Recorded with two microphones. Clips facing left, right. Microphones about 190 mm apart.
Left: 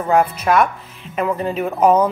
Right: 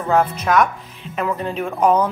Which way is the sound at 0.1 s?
10° left (ahead or behind).